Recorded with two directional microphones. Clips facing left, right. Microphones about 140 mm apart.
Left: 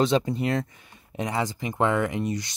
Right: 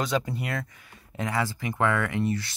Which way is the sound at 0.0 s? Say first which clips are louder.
Left 5 dB; 25° left (ahead or behind).